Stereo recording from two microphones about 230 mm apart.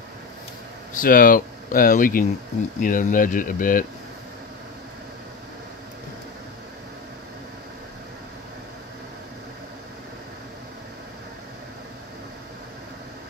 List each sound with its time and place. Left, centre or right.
0.9 s speech: left